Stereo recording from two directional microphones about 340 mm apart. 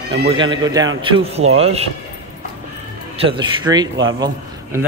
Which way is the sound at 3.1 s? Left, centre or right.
Centre.